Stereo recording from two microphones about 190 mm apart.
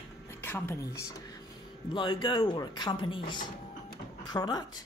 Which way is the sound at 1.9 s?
25° left (ahead or behind).